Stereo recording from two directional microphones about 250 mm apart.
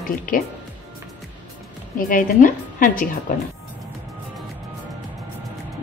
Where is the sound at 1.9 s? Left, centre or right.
Left.